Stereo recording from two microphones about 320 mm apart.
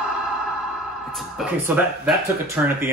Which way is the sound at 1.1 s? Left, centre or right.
Centre.